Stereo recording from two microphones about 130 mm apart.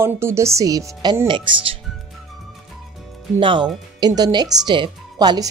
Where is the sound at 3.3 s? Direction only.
40° right (ahead or behind).